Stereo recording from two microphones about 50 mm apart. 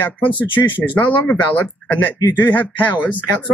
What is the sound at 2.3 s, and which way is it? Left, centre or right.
Speech, left.